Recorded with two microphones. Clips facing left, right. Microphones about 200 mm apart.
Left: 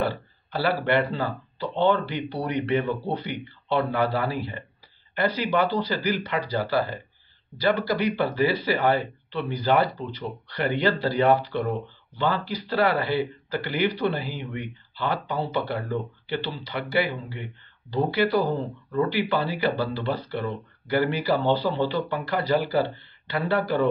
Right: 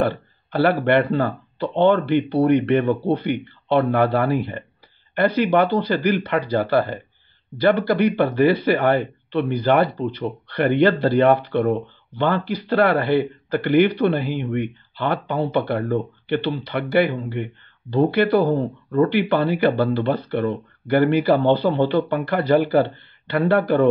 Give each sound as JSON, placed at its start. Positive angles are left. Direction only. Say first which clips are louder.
{"t": 0.0, "sound": "speech", "louder": "right 5 dB", "side_deg": -55}